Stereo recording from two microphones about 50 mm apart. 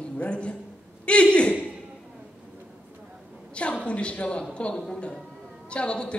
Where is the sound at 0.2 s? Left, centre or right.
Left.